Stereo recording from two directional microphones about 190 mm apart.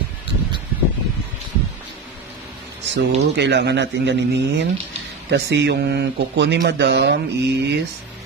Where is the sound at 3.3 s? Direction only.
65° right (ahead or behind).